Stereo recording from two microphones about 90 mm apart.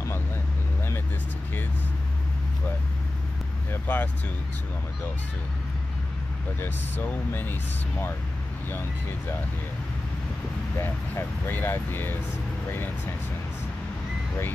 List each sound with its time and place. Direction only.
3.7 s vehicle: 20° left (ahead or behind)
6.6 s speech: 25° left (ahead or behind)
10.8 s speech: 25° left (ahead or behind)